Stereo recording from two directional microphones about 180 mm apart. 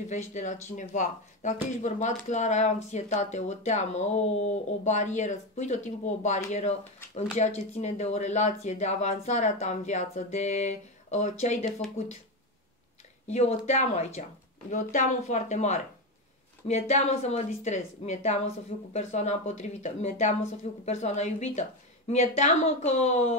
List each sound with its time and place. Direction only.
0.1 s speech: 40° left (ahead or behind)
13.3 s speech: 35° left (ahead or behind)